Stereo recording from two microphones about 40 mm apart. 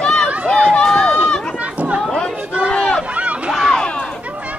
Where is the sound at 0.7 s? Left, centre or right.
Centre.